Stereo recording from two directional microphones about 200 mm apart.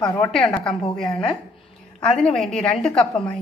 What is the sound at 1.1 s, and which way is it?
Speech, 25° left (ahead or behind).